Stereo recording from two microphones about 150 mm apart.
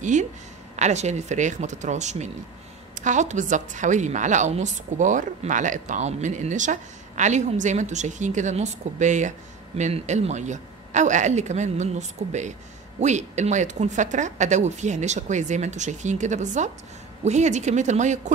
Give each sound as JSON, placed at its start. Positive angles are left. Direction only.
{"t": 0.0, "sound": "a woman's voice", "side_deg": -55}